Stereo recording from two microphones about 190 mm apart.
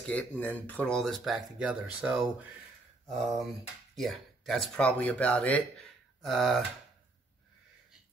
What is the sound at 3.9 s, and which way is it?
Speech, centre (ahead or behind).